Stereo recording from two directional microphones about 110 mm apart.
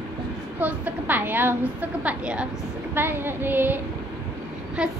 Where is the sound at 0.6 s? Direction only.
15° right (ahead or behind).